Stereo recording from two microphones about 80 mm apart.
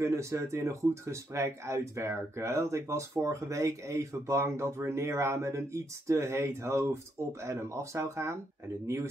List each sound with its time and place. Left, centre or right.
0.0 s speech: right